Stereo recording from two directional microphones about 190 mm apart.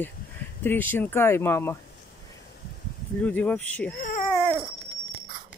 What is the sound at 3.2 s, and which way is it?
Speech, 10° left (ahead or behind).